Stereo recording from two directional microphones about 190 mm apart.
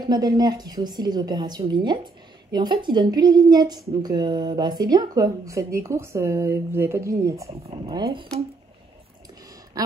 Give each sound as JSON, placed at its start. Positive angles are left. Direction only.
{"t": 0.1, "sound": "speech", "side_deg": -20}
{"t": 7.6, "sound": "speech", "side_deg": -30}